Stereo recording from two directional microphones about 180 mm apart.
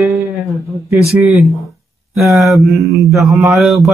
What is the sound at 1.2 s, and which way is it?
Mantra, centre (ahead or behind).